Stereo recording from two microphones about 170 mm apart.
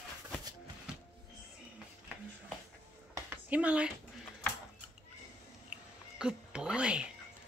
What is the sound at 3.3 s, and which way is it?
Speech, 10° right (ahead or behind).